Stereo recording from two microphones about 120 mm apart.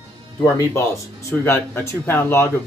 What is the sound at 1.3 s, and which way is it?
Speech, 20° left (ahead or behind).